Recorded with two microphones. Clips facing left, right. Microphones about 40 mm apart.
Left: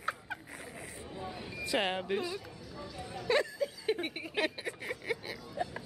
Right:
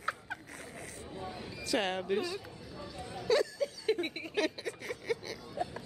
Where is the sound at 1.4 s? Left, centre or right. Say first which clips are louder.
Even; centre.